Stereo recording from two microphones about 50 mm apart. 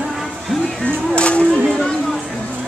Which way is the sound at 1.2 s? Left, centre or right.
Left.